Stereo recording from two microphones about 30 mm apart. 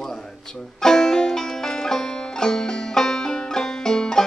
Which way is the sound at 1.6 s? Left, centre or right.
Centre.